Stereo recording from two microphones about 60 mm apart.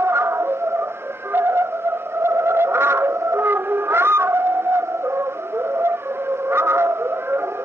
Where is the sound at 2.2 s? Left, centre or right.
Right.